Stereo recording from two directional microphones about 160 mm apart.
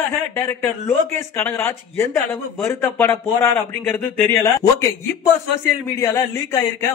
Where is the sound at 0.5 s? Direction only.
15° left (ahead or behind).